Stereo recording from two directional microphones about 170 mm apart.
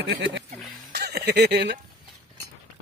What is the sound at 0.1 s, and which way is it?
Speech, 75° right (ahead or behind).